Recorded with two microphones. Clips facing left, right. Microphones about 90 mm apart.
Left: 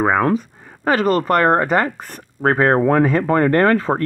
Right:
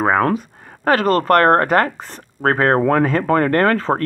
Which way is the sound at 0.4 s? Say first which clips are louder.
Even; centre (ahead or behind).